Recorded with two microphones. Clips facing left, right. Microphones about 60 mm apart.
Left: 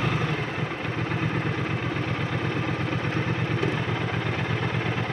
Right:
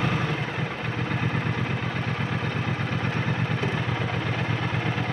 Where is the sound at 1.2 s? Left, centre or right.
Centre.